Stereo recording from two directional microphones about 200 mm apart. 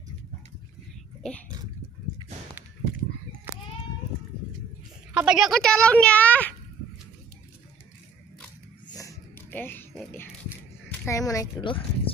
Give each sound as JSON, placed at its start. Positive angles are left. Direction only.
{"t": 1.2, "sound": "speech", "side_deg": 5}
{"t": 5.1, "sound": "speech", "side_deg": -5}
{"t": 8.8, "sound": "a sound", "side_deg": 15}
{"t": 11.1, "sound": "speech", "side_deg": 15}